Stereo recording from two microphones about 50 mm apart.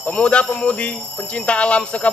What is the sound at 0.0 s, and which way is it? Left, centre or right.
A man's voice, left.